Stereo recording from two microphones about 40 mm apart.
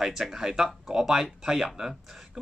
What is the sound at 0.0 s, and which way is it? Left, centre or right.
Speech, centre.